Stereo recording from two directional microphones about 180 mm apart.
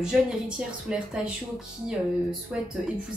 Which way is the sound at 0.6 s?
5° right (ahead or behind).